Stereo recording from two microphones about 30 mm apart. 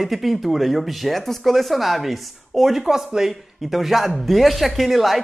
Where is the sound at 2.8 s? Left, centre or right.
Centre.